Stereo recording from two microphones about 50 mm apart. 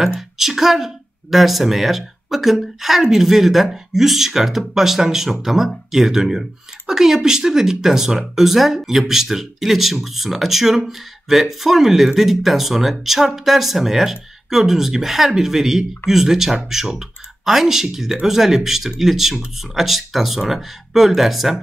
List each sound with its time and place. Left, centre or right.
0.4 s speech: centre